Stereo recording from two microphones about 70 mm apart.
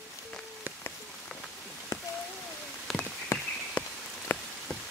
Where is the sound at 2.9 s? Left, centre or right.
Centre.